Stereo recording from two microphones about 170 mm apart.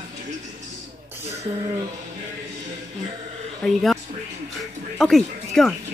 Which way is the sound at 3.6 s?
Centre (ahead or behind).